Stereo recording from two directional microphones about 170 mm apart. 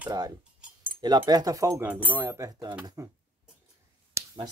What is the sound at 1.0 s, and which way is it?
Speech, 25° right (ahead or behind).